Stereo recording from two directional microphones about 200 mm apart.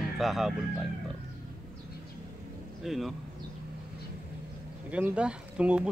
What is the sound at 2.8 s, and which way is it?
Speech, centre (ahead or behind).